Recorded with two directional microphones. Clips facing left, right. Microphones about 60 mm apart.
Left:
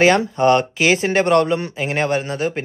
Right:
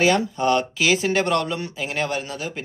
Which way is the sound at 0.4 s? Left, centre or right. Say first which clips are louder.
Left 5 dB; left.